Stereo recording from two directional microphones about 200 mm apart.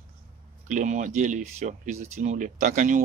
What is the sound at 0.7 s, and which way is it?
Speech, 40° right (ahead or behind).